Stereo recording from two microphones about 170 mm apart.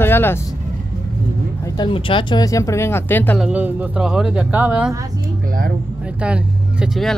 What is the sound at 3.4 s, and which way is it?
Speech, 10° right (ahead or behind).